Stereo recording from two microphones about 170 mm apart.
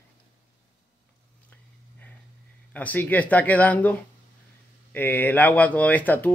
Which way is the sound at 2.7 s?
10° left (ahead or behind).